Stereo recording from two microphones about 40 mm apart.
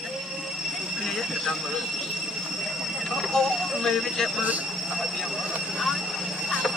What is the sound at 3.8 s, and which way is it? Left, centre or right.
Speech, centre.